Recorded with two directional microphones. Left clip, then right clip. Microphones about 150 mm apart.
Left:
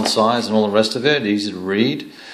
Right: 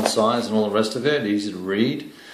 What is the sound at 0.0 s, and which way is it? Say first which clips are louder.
Speech: left 3 dB; 35° left (ahead or behind).